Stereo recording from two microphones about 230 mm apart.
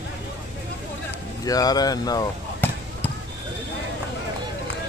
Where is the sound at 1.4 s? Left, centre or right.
Centre.